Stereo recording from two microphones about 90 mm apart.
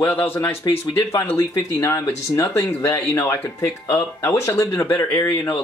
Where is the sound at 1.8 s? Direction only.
35° left (ahead or behind).